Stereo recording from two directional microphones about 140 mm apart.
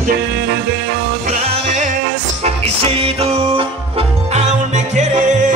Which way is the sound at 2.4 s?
45° right (ahead or behind).